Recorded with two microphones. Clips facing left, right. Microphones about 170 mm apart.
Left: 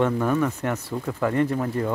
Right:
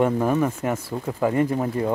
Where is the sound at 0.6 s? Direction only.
10° right (ahead or behind).